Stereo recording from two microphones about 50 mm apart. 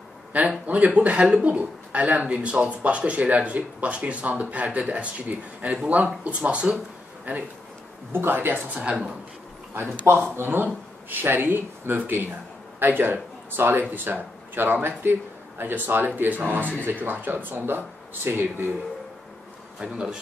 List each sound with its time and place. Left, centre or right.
0.3 s speech: right
7.3 s speech: right
8.7 s speech: centre
9.8 s speech: right
19.8 s speech: centre